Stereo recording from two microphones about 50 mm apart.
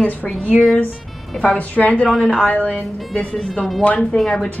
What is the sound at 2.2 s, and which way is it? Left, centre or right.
Speech, centre.